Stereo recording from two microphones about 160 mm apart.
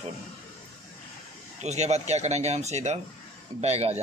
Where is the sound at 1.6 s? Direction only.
45° right (ahead or behind).